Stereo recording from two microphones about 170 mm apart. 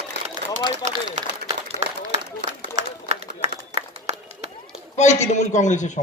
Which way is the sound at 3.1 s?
40° right (ahead or behind).